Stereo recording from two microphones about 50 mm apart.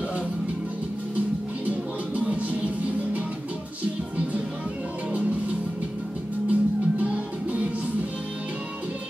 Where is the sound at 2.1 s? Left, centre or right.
Right.